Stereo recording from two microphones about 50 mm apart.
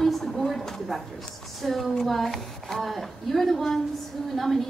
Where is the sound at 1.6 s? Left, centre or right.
Centre.